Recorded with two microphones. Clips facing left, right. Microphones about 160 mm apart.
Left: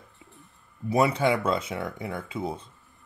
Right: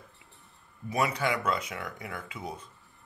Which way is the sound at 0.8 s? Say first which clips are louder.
Left 6 dB; 30° left (ahead or behind).